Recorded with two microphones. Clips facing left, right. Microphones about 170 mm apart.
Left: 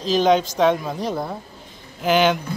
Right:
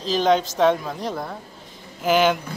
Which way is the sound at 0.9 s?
10° left (ahead or behind).